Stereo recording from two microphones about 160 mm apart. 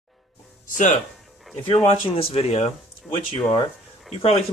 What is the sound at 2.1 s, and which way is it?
Speech, 35° left (ahead or behind).